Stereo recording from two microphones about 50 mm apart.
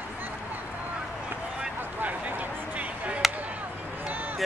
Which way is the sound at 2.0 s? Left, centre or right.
Right.